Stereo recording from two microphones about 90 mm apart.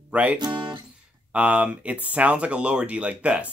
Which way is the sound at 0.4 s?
60° right (ahead or behind).